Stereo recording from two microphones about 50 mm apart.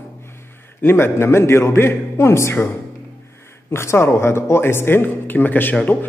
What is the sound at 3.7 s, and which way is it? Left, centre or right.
Speech, left.